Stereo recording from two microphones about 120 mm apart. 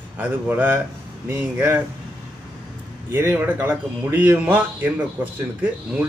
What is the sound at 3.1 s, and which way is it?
A man's voice, 20° right (ahead or behind).